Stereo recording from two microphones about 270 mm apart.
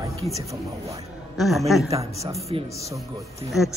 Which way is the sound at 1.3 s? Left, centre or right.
Centre.